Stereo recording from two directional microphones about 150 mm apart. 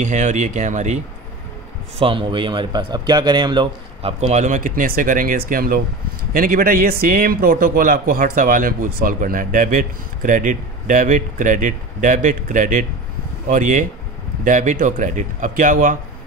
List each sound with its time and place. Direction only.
0.0 s speech: 55° right (ahead or behind)
2.0 s speech: 35° right (ahead or behind)
4.3 s a man's voice: 55° right (ahead or behind)